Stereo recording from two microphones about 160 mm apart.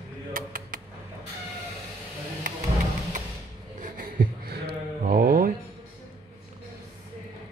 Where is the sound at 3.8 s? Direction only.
60° right (ahead or behind).